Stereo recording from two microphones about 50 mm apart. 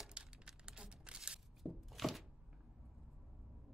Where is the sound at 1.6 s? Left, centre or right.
Centre.